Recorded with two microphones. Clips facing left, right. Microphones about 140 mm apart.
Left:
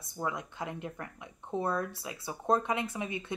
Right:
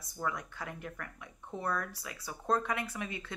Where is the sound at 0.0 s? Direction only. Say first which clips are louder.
Left 2 dB; 20° left (ahead or behind).